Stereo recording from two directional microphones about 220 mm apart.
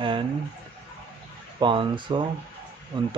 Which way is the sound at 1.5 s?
20° right (ahead or behind).